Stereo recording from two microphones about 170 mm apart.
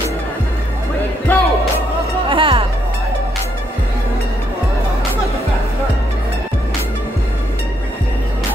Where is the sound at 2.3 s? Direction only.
30° right (ahead or behind).